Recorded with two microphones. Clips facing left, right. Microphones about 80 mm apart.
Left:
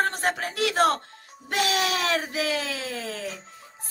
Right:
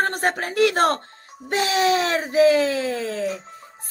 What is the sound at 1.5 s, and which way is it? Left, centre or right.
Speech, right.